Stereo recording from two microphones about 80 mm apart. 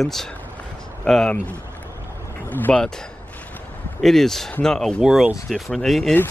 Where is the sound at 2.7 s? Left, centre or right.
Centre.